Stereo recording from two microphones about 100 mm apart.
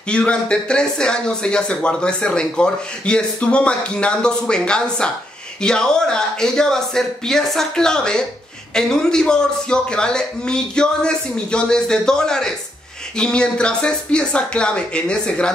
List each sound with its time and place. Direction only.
0.1 s speech: 10° left (ahead or behind)